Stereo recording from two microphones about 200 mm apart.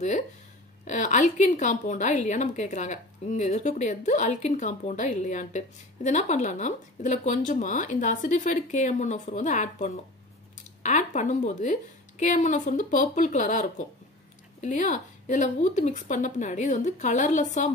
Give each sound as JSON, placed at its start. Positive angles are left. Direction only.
{"t": 0.8, "sound": "a woman's voice", "side_deg": 40}